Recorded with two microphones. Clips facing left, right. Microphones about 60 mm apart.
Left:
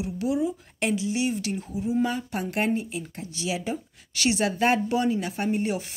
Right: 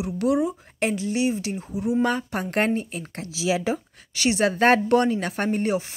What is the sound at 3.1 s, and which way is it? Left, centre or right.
Speech, right.